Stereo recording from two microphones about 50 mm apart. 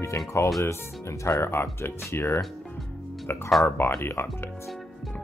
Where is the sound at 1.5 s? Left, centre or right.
Left.